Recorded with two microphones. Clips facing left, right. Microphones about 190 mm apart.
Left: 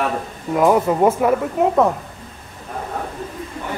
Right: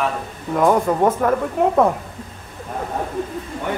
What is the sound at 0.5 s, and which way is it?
A man's voice, 5° left (ahead or behind).